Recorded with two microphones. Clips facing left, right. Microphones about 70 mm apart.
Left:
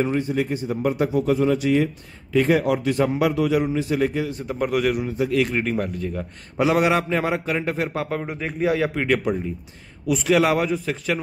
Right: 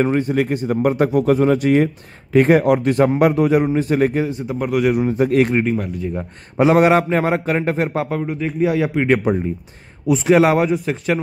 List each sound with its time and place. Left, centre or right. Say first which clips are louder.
0.0 s a man's voice: right 5 dB; right
4.5 s speech: right 3 dB; centre
5.1 s a man's voice: right 6 dB; right
5.7 s speech: right 3 dB; centre
6.1 s a man's voice: right 8 dB; right
8.2 s speech: right 5 dB; centre
9.0 s a man's voice: right 5 dB; right